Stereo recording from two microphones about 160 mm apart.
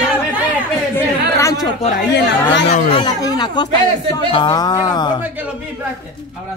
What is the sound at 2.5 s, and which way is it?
Speech, 90° left.